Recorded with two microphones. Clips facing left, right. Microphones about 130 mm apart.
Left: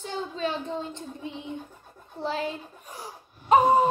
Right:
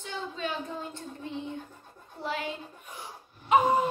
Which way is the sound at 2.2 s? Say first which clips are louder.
Left 4 dB; 35° left (ahead or behind).